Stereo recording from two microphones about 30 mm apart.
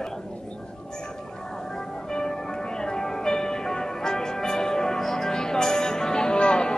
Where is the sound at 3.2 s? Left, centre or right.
Centre.